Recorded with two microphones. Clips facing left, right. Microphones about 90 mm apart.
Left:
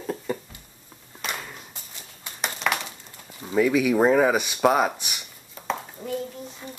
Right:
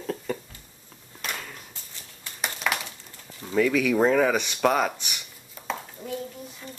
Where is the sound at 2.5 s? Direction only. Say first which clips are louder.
Left 2 dB; centre (ahead or behind).